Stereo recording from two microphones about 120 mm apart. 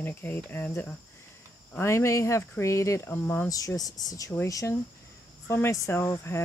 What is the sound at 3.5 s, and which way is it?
Speech, 30° left (ahead or behind).